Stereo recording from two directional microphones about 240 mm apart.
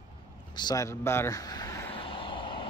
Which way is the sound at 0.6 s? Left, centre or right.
Centre.